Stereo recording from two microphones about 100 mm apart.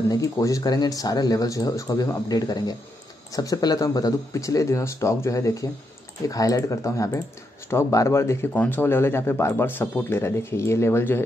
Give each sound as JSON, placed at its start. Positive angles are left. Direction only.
{"t": 0.1, "sound": "speech", "side_deg": 35}